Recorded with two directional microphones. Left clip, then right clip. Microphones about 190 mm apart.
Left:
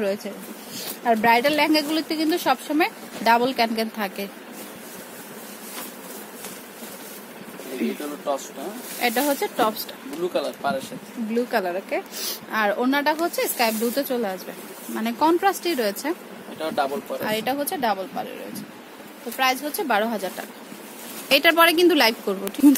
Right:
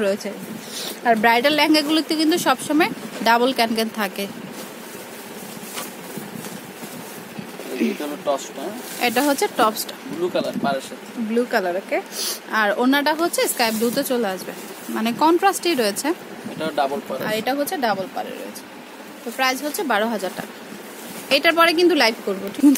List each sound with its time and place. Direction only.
0.0 s a woman's voice: 10° right (ahead or behind)
7.7 s a woman's voice: 15° right (ahead or behind)
17.2 s speech: 5° left (ahead or behind)
19.3 s speech: 5° left (ahead or behind)
21.3 s speech: 15° left (ahead or behind)